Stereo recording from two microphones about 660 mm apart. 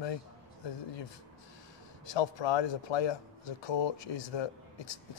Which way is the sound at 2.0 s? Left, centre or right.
Left.